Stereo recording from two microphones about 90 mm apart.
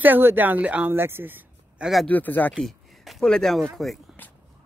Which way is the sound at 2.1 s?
20° left (ahead or behind).